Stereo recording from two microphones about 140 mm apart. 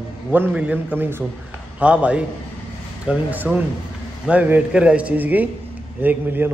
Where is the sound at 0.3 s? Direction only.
10° right (ahead or behind).